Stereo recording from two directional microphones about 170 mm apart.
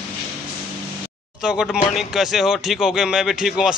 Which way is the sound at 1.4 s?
5° right (ahead or behind).